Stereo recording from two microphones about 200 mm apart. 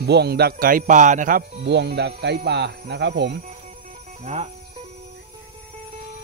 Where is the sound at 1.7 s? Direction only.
60° right (ahead or behind).